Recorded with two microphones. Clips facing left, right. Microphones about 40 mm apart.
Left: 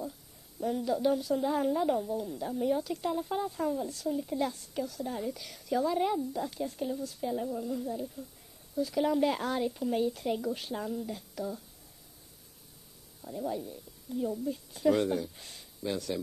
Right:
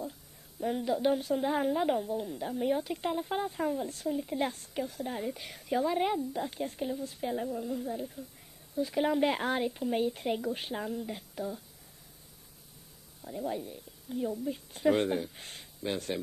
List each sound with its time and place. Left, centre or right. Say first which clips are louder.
0.6 s a woman's voice: even; right
4.4 s a woman's voice: even; right
7.4 s a woman's voice: even; centre; by 11.4 s right
13.2 s speech: even; centre
13.5 s a woman's voice: even; right